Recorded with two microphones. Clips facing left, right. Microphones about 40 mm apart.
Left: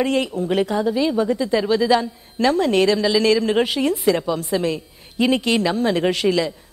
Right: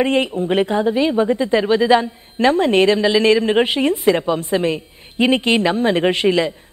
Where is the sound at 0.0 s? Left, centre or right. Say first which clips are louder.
Right 3 dB; right.